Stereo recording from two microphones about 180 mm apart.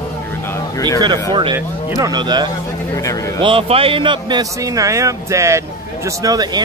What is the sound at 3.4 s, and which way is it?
A man's voice, 30° right (ahead or behind).